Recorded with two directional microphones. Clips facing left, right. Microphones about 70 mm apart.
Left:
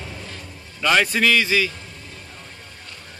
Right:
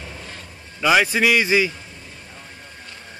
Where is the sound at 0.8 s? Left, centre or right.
Centre.